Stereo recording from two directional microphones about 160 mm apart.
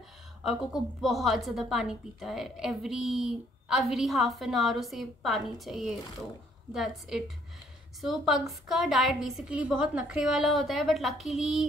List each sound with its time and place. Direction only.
0.4 s a woman's voice: centre (ahead or behind)